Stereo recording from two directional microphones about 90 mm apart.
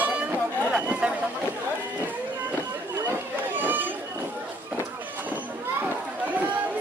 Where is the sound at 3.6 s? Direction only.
20° right (ahead or behind).